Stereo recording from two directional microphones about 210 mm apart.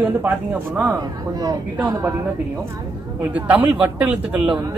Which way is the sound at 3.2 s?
5° right (ahead or behind).